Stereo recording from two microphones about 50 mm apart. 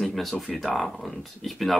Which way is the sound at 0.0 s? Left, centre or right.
Centre.